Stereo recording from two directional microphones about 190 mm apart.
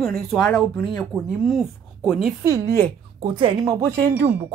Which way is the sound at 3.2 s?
25° right (ahead or behind).